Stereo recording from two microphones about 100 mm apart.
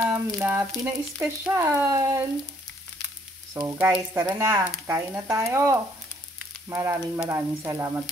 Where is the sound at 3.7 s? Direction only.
25° right (ahead or behind).